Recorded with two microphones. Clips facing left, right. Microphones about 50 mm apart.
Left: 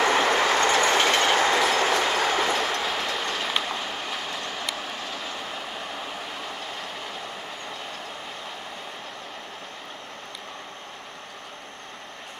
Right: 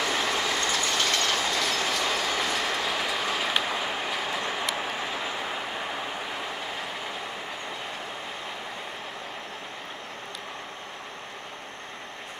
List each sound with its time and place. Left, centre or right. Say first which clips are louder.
0.0 s train: left 6 dB; left
1.3 s train: left 6 dB; left
2.7 s train: left 1 dB; centre